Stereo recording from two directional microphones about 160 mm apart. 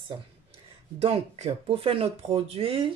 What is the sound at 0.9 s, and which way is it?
Speech, 40° right (ahead or behind).